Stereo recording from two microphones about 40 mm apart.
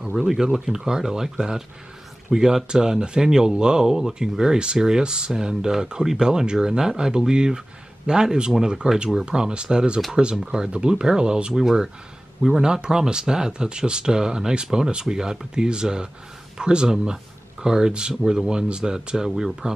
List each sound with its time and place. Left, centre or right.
0.2 s speech: centre